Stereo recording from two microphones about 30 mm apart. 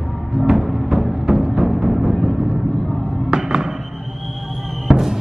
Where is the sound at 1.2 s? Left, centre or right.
Right.